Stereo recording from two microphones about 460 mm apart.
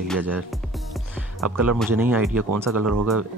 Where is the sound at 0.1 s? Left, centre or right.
Centre.